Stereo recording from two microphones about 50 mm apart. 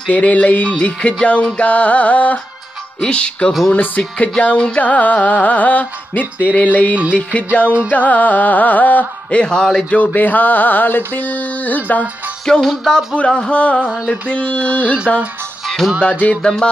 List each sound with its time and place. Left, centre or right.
0.1 s music: left
3.7 s music: left
4.6 s music: centre
4.8 s music: left
9.4 s music: centre
9.8 s music: left
12.4 s music: centre
13.1 s music: left
15.8 s music: centre